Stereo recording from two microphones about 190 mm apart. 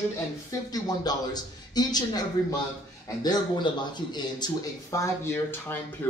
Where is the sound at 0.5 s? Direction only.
20° left (ahead or behind).